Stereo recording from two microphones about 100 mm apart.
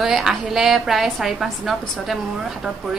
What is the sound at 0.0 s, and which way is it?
Speech, 5° right (ahead or behind).